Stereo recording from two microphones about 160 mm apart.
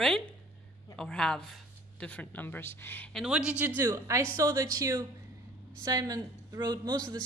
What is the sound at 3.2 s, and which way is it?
A woman's voice, 5° right (ahead or behind).